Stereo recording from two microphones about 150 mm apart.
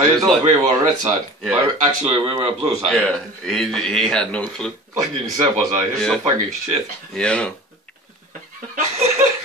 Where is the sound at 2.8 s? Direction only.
5° left (ahead or behind).